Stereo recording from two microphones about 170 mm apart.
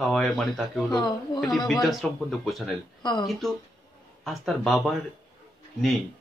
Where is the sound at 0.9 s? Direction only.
25° left (ahead or behind).